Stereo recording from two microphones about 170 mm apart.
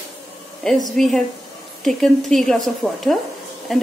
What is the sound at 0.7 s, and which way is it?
Speech, centre (ahead or behind).